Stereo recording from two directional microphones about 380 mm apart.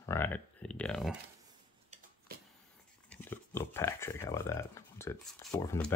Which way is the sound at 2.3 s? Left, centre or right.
Right.